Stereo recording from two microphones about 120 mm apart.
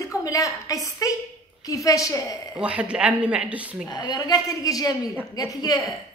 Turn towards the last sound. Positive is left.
turn(degrees=30)  # may be behind; listen again after turning